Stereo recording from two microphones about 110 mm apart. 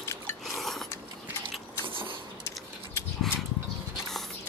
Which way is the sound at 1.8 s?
50° right (ahead or behind).